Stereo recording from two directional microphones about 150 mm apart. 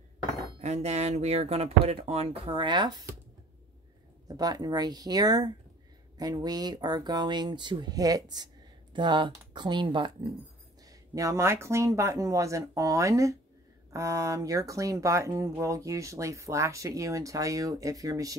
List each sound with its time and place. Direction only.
0.6 s speech: 45° right (ahead or behind); by 3.0 s 30° right (ahead or behind)
4.3 s speech: 25° right (ahead or behind)